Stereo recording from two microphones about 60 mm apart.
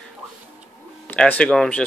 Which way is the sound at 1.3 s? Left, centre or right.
Centre.